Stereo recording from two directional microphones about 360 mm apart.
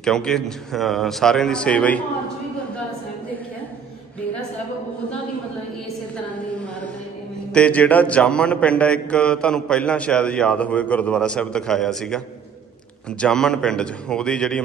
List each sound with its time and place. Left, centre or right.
0.0 s a man's voice: centre
7.5 s a man's voice: centre
13.2 s a man's voice: centre